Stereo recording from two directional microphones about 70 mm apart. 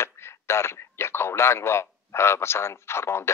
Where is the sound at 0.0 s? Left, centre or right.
Left.